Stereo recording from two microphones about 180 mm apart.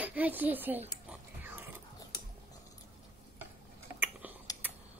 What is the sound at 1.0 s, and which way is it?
Music, 10° right (ahead or behind).